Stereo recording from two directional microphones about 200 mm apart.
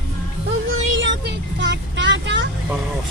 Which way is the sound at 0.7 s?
70° right (ahead or behind).